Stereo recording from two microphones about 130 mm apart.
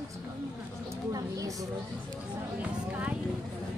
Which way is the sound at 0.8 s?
25° right (ahead or behind).